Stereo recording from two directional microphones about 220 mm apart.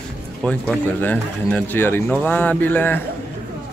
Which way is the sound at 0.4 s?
5° left (ahead or behind).